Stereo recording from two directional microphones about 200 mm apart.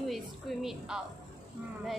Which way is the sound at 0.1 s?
Centre (ahead or behind).